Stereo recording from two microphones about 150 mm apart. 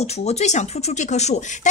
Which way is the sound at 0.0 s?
45° left (ahead or behind).